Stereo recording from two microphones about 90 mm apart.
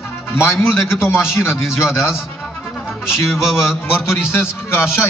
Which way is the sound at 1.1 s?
5° right (ahead or behind).